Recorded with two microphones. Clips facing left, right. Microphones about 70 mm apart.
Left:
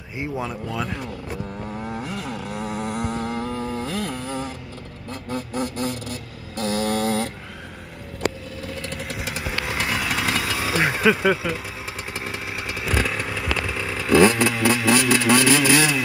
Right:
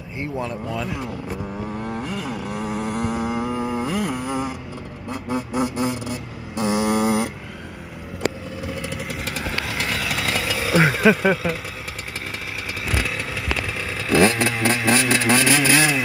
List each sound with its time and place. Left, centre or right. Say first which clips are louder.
0.2 s speech: right 1 dB; centre
0.7 s speech: right 1 dB; centre
1.7 s vehicle: right 1 dB; centre
8.6 s vehicle: right 2 dB; centre
9.8 s a sound: left 3 dB; centre
10.9 s speech: right 2 dB; centre
12.9 s vehicle: left 2 dB; centre
14.4 s vehicle: left 1 dB; right